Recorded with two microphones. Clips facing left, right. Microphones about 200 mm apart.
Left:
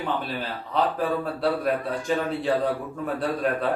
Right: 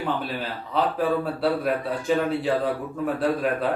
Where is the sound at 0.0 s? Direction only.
5° right (ahead or behind).